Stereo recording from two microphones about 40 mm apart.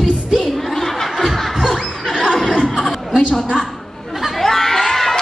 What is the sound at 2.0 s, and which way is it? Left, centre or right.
Neigh, centre.